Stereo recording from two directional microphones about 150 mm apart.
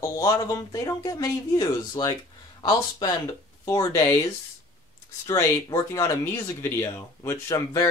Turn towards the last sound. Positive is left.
turn(degrees=20)  # may be behind; listen again after turning